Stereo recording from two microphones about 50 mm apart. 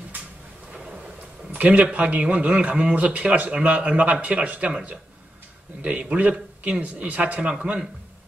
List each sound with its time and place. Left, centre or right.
1.5 s a man's voice: right
5.8 s a man's voice: right